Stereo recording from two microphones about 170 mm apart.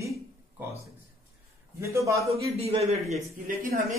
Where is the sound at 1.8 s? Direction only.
15° right (ahead or behind).